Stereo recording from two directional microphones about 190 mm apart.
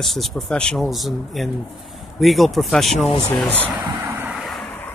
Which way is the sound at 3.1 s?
35° left (ahead or behind).